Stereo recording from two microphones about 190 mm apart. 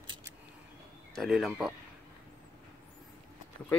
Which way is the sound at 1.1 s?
Centre (ahead or behind).